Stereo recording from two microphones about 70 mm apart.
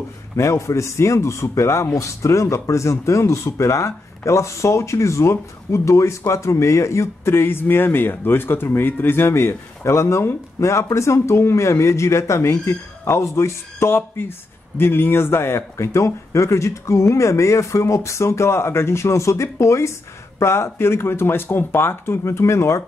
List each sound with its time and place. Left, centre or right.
0.4 s speech: left